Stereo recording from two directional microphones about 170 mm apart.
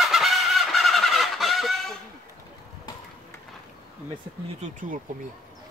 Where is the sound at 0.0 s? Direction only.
Centre (ahead or behind).